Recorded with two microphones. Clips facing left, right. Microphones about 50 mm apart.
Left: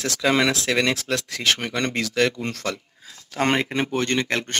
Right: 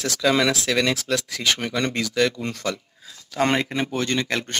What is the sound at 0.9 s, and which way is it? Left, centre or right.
Speech, left.